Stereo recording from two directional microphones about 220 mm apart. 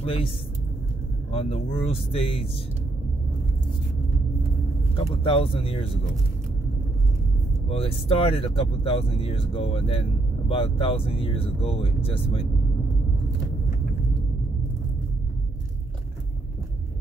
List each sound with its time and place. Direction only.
0.0 s speech: 25° left (ahead or behind)
1.3 s speech: 25° left (ahead or behind)
4.9 s speech: 25° left (ahead or behind)
7.7 s speech: 25° left (ahead or behind)